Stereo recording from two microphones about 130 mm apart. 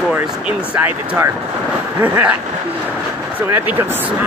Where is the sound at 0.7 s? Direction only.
15° right (ahead or behind).